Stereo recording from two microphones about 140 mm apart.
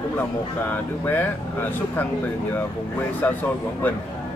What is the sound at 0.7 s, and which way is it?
Speech, 15° left (ahead or behind).